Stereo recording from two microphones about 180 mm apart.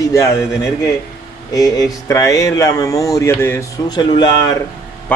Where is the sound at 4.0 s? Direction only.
25° left (ahead or behind).